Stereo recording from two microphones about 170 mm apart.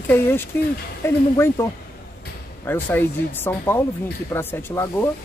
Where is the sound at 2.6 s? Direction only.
10° left (ahead or behind).